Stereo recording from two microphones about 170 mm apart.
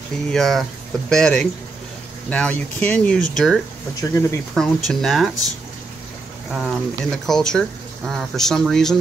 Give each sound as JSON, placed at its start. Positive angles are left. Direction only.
{"t": 0.3, "sound": "speech", "side_deg": 0}
{"t": 4.0, "sound": "speech", "side_deg": 20}
{"t": 4.6, "sound": "speech", "side_deg": 0}
{"t": 6.5, "sound": "speech", "side_deg": 0}